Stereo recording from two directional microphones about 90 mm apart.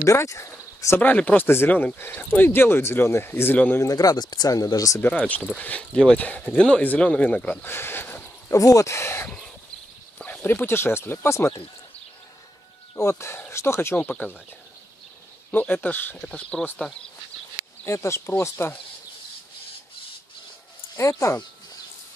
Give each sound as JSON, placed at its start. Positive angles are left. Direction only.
{"t": 0.0, "sound": "speech", "side_deg": 35}
{"t": 1.0, "sound": "speech", "side_deg": 15}
{"t": 3.8, "sound": "speech", "side_deg": 45}
{"t": 5.0, "sound": "speech", "side_deg": 20}
{"t": 8.5, "sound": "speech", "side_deg": 35}
{"t": 10.1, "sound": "speech", "side_deg": 15}
{"t": 12.9, "sound": "speech", "side_deg": 30}
{"t": 13.9, "sound": "speech", "side_deg": 15}
{"t": 15.5, "sound": "speech", "side_deg": 20}
{"t": 16.2, "sound": "speech", "side_deg": 10}
{"t": 17.8, "sound": "speech", "side_deg": 30}
{"t": 20.9, "sound": "speech", "side_deg": 35}